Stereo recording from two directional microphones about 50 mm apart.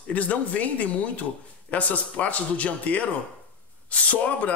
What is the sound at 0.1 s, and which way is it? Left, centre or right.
Speech, left.